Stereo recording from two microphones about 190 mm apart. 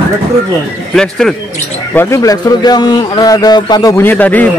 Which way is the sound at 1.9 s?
15° left (ahead or behind).